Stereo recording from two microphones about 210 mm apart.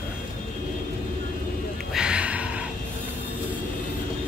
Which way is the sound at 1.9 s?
5° right (ahead or behind).